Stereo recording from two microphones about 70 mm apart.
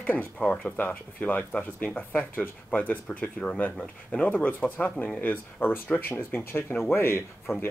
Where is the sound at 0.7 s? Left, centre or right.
Left.